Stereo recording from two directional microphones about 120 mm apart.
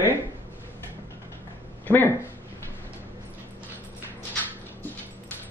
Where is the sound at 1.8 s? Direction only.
15° left (ahead or behind).